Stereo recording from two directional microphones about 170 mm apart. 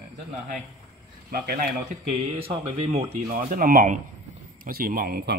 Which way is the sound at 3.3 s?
55° right (ahead or behind).